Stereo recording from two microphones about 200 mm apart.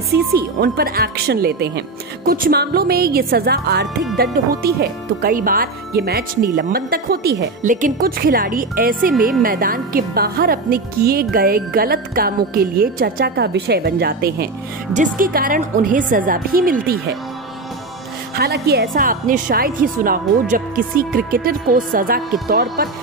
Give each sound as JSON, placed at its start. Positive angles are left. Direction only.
{"t": 0.1, "sound": "a woman's voice", "side_deg": -50}
{"t": 9.1, "sound": "a woman's voice", "side_deg": 0}
{"t": 9.4, "sound": "a woman's voice", "side_deg": -45}
{"t": 18.3, "sound": "a woman's voice", "side_deg": -50}